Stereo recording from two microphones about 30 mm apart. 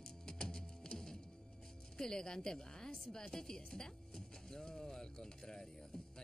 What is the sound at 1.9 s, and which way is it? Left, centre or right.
A woman's voice, left.